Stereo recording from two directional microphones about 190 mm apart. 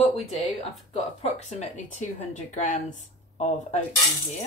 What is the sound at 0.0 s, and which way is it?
A woman's voice, 35° left (ahead or behind).